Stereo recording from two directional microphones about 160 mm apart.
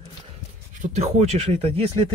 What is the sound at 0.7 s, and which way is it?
Speech, 45° right (ahead or behind).